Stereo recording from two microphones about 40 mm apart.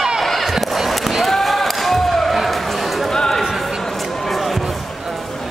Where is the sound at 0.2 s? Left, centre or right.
Centre.